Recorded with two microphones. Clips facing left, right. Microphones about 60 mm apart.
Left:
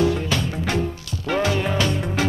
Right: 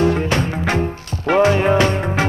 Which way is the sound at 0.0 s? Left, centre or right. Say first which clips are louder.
Right 4 dB; right.